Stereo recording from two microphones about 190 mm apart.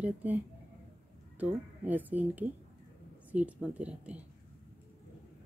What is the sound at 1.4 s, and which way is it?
Speech, 10° right (ahead or behind).